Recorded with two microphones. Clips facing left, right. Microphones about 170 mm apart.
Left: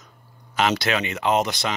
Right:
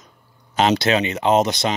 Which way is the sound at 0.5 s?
25° right (ahead or behind).